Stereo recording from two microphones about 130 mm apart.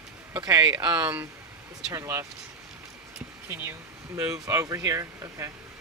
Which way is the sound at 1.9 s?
25° right (ahead or behind).